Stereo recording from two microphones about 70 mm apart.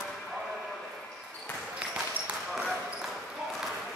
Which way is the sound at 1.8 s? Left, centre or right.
Centre.